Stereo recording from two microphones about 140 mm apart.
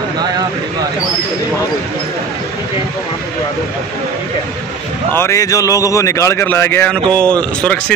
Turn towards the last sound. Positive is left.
turn(degrees=10)  # may be behind; listen again after turning